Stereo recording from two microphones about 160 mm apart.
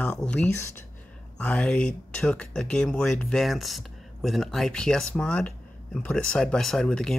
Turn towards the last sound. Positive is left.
turn(degrees=5)  # may be behind; listen again after turning